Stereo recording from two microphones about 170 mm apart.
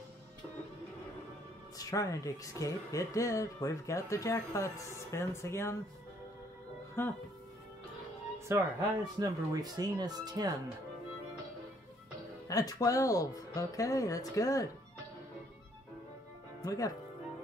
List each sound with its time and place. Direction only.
1.8 s speech: 20° left (ahead or behind)
7.0 s speech: 15° left (ahead or behind)
8.5 s speech: 15° right (ahead or behind)
12.4 s speech: 20° left (ahead or behind)
16.6 s speech: 20° left (ahead or behind)